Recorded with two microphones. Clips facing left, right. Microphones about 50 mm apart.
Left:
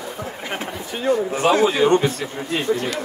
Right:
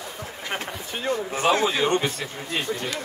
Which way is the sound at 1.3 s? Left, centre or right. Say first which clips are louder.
Left 3 dB; left.